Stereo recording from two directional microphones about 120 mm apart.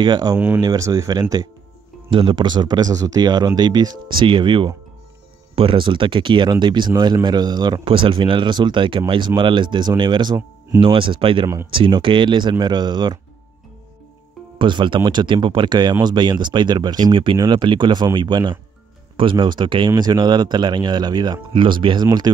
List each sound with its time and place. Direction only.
0.0 s speech: 35° right (ahead or behind)
2.0 s speech: 45° right (ahead or behind)
14.6 s speech: 40° right (ahead or behind)